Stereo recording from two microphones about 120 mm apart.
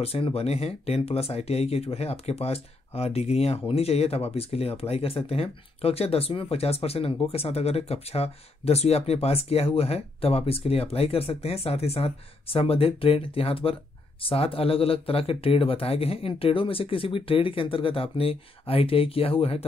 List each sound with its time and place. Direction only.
0.0 s speech: 55° left (ahead or behind)